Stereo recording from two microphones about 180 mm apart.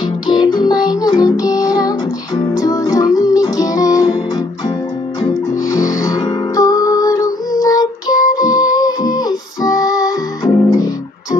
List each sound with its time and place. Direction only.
0.0 s music: 25° left (ahead or behind)
5.5 s music: 20° left (ahead or behind)